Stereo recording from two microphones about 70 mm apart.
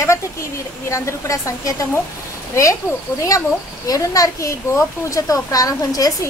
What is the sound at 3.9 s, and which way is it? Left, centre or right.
A woman's voice, left.